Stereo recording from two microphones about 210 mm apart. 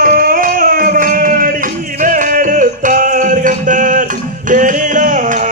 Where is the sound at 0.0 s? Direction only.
45° right (ahead or behind).